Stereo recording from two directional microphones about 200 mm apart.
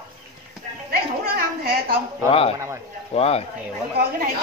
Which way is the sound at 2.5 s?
15° right (ahead or behind).